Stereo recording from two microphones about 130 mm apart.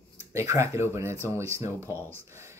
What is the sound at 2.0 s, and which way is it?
Speech, 15° left (ahead or behind).